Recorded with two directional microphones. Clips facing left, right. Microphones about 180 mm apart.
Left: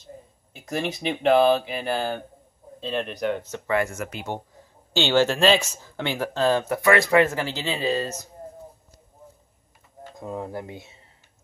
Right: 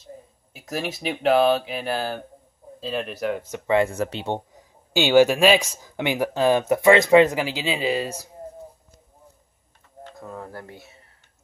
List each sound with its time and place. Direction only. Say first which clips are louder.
0.0 s speech: right 1 dB; 5° right (ahead or behind)
3.7 s speech: right 4 dB; 30° right (ahead or behind)
4.9 s speech: right 4 dB; 10° right (ahead or behind)
10.1 s speech: left 5 dB; 20° left (ahead or behind)